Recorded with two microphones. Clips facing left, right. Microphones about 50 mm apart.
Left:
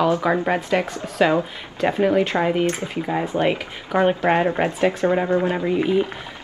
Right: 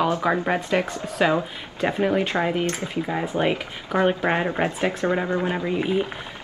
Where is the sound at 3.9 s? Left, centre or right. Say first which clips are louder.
Left 3 dB; left.